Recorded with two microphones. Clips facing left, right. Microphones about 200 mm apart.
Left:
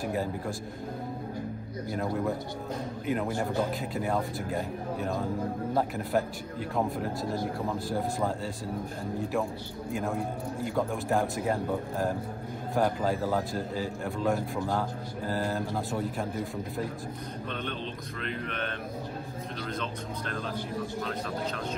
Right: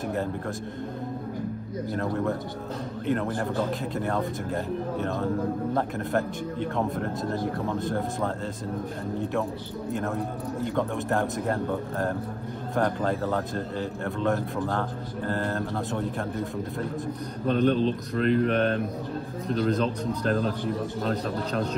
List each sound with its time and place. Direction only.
2.0 s speech: centre (ahead or behind)
10.1 s speech: centre (ahead or behind)
17.5 s a man's voice: 40° right (ahead or behind)